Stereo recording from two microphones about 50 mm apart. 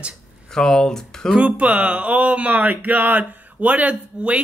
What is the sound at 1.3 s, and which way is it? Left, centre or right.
Speech, right.